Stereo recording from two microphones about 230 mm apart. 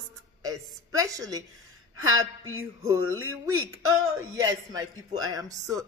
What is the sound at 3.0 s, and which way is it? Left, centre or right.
Speech, right.